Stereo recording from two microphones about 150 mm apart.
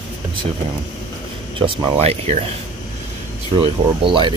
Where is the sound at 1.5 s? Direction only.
40° right (ahead or behind).